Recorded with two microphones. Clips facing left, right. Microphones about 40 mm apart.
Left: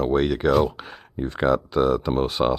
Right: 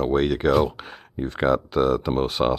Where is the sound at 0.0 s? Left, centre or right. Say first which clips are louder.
Even; centre.